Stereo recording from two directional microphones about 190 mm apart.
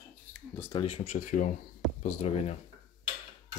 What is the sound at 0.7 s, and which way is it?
Speech, 30° left (ahead or behind).